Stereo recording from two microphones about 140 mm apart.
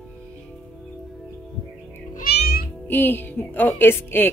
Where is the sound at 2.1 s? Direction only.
90° left.